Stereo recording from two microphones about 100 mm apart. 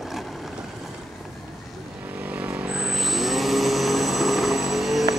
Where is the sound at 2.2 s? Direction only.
15° right (ahead or behind).